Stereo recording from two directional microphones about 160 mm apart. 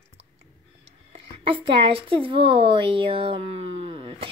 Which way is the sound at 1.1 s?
35° right (ahead or behind).